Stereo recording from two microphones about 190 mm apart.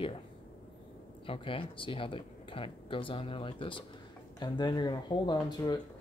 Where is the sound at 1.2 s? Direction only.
30° left (ahead or behind).